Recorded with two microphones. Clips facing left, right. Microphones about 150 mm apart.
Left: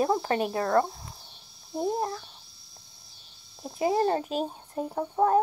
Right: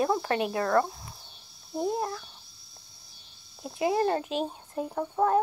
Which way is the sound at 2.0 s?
25° left (ahead or behind).